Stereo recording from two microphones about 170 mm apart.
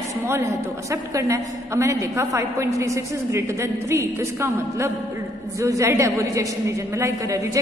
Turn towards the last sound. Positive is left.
turn(degrees=-20)  # may be behind; listen again after turning